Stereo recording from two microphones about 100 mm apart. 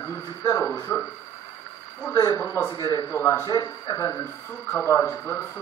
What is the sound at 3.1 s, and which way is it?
Speech, 25° left (ahead or behind).